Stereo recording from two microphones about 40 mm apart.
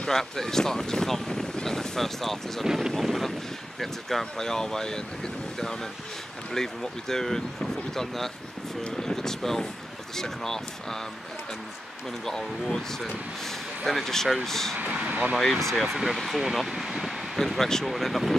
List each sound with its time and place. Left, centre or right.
0.1 s speech: centre
2.6 s speech: centre
12.3 s speech: centre
15.8 s speech: centre
17.4 s a sound: centre
17.8 s speech: centre